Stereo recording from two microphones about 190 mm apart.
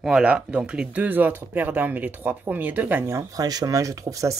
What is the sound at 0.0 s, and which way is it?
Speech, 5° right (ahead or behind).